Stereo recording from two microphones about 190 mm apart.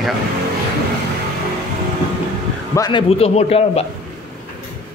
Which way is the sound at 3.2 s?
35° left (ahead or behind).